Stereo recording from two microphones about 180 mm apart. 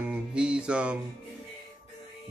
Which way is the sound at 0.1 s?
5° right (ahead or behind).